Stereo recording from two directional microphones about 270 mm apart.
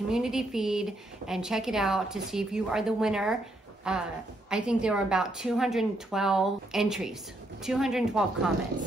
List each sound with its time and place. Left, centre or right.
0.1 s a woman's voice: centre